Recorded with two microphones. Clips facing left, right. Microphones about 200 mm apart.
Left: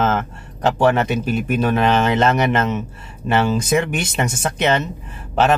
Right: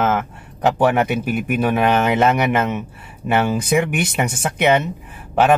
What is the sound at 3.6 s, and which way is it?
Speech, 60° right (ahead or behind).